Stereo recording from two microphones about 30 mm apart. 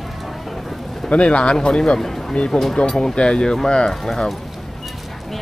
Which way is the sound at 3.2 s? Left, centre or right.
Left.